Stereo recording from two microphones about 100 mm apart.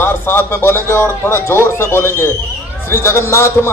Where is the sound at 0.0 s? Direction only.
20° left (ahead or behind).